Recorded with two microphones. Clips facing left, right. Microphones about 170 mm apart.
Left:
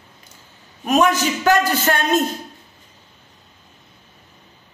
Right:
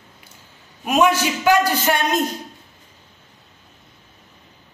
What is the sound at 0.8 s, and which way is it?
A man's voice, 10° right (ahead or behind).